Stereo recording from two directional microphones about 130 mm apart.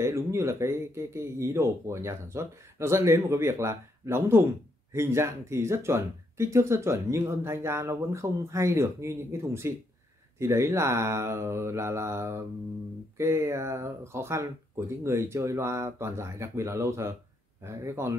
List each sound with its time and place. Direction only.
0.0 s speech: 20° right (ahead or behind)